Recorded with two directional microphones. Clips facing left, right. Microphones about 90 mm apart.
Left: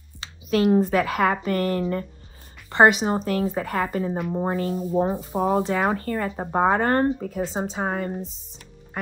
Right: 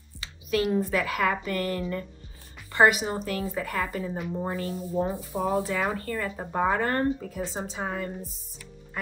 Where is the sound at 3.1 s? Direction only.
40° left (ahead or behind).